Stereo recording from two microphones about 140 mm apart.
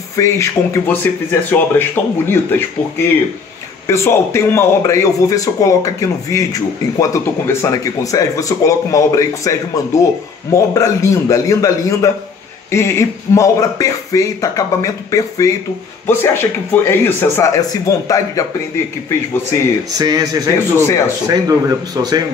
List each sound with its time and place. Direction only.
0.1 s a man's voice: 20° left (ahead or behind)
3.8 s a man's voice: 20° left (ahead or behind)
20.0 s speech: 30° right (ahead or behind)
20.7 s a man's voice: 20° left (ahead or behind)
21.3 s speech: 25° right (ahead or behind)